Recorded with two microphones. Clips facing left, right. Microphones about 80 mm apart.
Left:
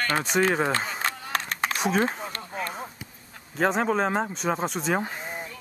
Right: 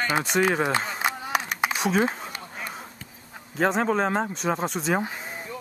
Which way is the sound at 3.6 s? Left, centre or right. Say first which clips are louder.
Right 1 dB; centre.